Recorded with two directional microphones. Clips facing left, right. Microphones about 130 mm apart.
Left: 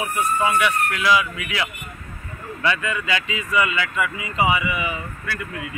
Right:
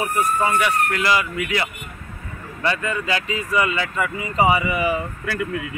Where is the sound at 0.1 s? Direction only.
40° right (ahead or behind).